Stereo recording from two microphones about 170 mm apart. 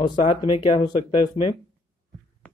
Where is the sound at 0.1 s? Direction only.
30° left (ahead or behind).